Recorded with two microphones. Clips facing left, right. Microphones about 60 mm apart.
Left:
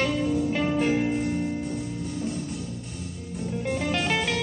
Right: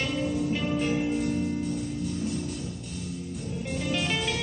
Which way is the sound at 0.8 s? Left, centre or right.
Left.